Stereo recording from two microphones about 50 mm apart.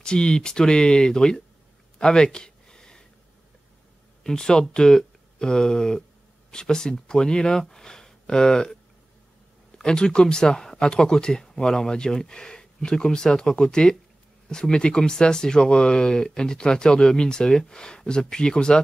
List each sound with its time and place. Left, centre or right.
0.0 s speech: centre
2.0 s a sound: centre
4.2 s speech: centre
9.8 s speech: centre